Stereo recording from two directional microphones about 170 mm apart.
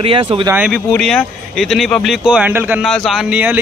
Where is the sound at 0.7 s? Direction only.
Centre (ahead or behind).